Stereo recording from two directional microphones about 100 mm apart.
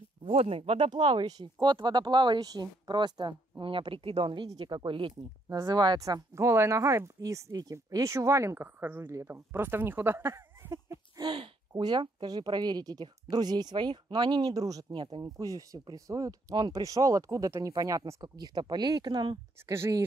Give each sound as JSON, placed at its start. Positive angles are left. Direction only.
{"t": 0.3, "sound": "speech", "side_deg": -85}
{"t": 0.8, "sound": "speech", "side_deg": -50}
{"t": 5.5, "sound": "speech", "side_deg": -40}
{"t": 11.1, "sound": "speech", "side_deg": -55}
{"t": 14.9, "sound": "speech", "side_deg": -55}
{"t": 15.2, "sound": "speech", "side_deg": -35}
{"t": 19.6, "sound": "speech", "side_deg": -25}